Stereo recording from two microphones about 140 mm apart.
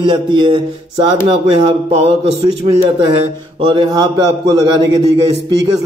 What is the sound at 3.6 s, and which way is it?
Speech, 35° right (ahead or behind).